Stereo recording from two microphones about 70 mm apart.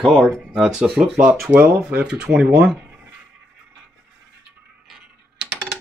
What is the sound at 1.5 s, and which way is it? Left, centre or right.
Speech, right.